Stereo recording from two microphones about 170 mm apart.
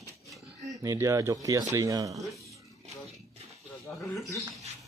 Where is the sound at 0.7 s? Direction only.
20° right (ahead or behind).